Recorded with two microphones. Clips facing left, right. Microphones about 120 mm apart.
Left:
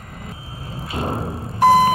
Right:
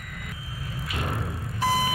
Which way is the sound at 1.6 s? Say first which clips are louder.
Left 12 dB; 55° left (ahead or behind).